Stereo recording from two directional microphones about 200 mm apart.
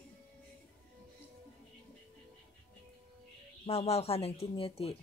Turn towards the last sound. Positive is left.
turn(degrees=30)  # may be behind; listen again after turning